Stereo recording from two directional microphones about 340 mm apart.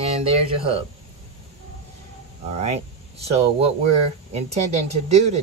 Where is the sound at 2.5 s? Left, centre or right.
Centre.